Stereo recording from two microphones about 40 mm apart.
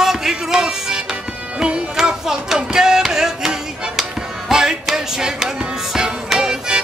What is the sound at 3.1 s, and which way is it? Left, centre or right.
Music, centre.